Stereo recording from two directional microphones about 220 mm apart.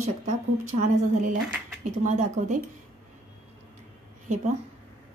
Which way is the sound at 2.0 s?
35° right (ahead or behind).